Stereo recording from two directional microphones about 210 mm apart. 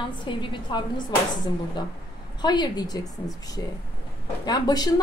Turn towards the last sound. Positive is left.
turn(degrees=20)  # may be behind; listen again after turning